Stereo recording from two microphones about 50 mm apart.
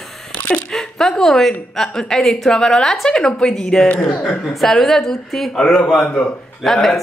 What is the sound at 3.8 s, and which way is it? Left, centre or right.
Speech, left.